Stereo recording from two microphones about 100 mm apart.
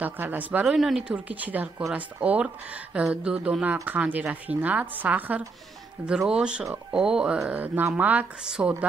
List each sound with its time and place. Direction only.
0.0 s a woman's voice: 15° right (ahead or behind)
0.7 s a woman's voice: centre (ahead or behind)